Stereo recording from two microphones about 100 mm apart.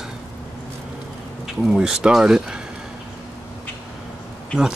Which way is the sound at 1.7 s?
10° right (ahead or behind).